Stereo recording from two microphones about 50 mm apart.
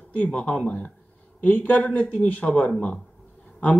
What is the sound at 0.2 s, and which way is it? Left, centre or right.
Speech, left.